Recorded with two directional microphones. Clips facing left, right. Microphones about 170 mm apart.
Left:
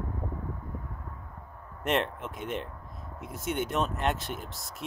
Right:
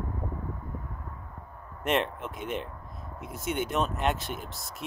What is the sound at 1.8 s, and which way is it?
Speech, 15° right (ahead or behind).